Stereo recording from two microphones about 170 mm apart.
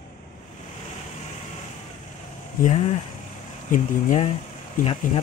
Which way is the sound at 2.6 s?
45° left (ahead or behind).